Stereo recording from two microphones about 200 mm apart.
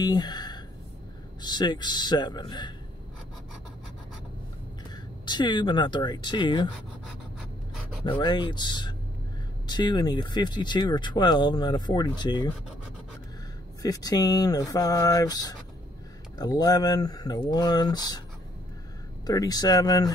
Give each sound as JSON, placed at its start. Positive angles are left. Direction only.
{"t": 0.0, "sound": "speech", "side_deg": 20}
{"t": 5.2, "sound": "speech", "side_deg": 20}
{"t": 8.0, "sound": "speech", "side_deg": 20}
{"t": 13.8, "sound": "speech", "side_deg": 20}
{"t": 19.2, "sound": "speech", "side_deg": 20}